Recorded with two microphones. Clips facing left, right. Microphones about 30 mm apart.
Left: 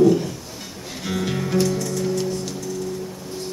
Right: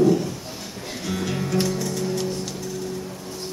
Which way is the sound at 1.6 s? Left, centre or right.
Centre.